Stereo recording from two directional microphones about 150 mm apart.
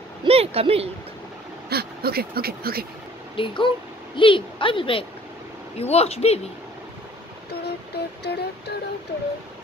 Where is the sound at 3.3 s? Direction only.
35° left (ahead or behind).